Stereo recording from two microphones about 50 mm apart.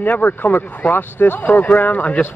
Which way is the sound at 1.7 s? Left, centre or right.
Left.